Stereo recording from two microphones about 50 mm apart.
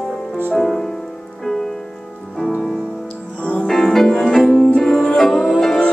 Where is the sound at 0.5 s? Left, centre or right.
Centre.